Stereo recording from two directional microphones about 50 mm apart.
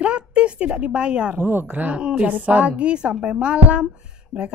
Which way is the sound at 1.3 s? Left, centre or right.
Right.